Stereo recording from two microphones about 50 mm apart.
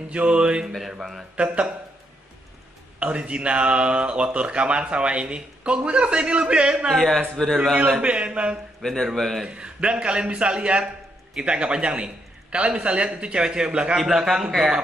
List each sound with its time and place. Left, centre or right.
0.1 s speech: right
0.7 s a man's voice: centre
1.3 s speech: right
3.0 s speech: right
7.1 s a man's voice: centre
8.0 s speech: right
8.8 s a man's voice: centre
9.5 s a man's voice: right